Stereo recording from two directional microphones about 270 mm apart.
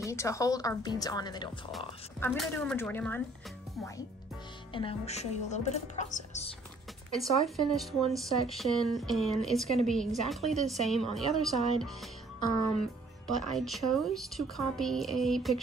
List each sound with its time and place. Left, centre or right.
0.0 s a woman's voice: centre
2.1 s a woman's voice: centre
4.7 s a woman's voice: left
7.1 s speech: centre
13.4 s speech: centre